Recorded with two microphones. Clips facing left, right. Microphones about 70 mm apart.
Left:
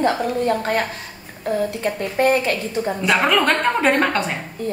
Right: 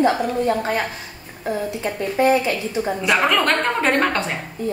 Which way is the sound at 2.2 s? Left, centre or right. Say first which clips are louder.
Even; left.